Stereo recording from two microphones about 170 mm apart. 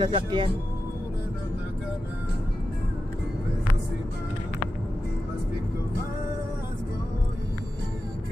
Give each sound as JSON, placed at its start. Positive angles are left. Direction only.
{"t": 0.0, "sound": "speech", "side_deg": -30}